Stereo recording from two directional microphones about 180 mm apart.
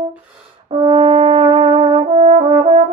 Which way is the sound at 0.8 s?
30° right (ahead or behind).